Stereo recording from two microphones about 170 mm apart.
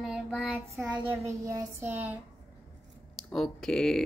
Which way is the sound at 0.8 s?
10° right (ahead or behind).